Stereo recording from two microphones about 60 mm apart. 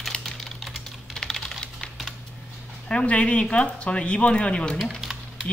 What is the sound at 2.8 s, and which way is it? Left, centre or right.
Speech, centre.